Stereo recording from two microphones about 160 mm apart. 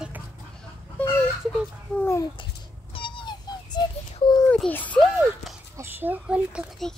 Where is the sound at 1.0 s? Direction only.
15° left (ahead or behind).